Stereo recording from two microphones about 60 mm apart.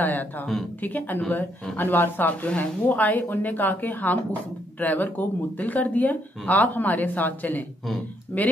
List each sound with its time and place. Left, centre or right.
0.0 s speech: left